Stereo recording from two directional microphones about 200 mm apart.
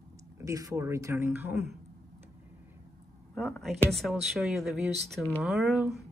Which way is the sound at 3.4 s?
Centre (ahead or behind).